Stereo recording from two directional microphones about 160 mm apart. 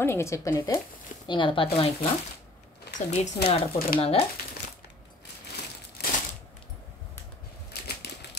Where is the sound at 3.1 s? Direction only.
40° left (ahead or behind).